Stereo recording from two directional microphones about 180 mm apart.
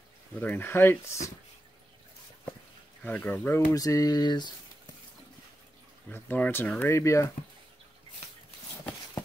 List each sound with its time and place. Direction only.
0.4 s speech: 10° left (ahead or behind)
3.0 s speech: 10° left (ahead or behind); by 4.5 s 25° left (ahead or behind)
6.0 s speech: 10° left (ahead or behind)